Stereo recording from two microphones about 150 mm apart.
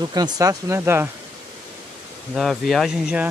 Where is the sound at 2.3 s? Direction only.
Centre (ahead or behind).